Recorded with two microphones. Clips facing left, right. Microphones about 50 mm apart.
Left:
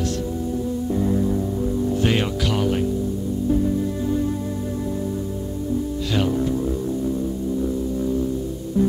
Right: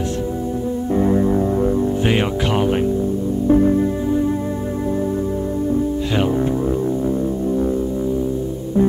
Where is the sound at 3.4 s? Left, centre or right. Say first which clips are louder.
Right 7 dB; right.